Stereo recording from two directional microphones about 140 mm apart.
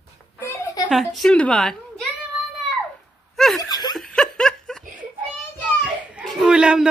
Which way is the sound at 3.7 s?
30° left (ahead or behind).